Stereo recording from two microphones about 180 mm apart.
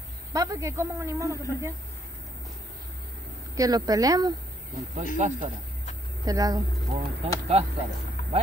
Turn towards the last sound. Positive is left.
turn(degrees=-35)  # may be behind; listen again after turning